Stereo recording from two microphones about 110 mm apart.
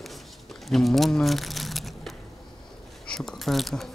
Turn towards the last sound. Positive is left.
turn(degrees=0)  # may be behind; listen again after turning